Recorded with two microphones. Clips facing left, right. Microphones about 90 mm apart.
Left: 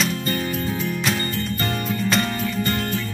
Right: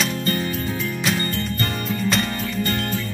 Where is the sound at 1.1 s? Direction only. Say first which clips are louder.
Right 1 dB; centre (ahead or behind).